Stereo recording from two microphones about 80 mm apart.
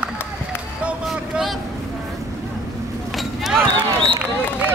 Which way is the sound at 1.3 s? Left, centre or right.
Centre.